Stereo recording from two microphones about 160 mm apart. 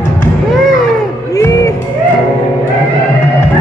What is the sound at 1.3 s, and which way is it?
Music, 20° left (ahead or behind).